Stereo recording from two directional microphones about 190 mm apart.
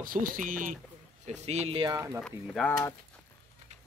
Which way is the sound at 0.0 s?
45° right (ahead or behind).